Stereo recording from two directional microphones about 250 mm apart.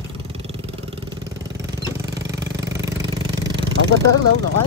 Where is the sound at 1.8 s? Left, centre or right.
Centre.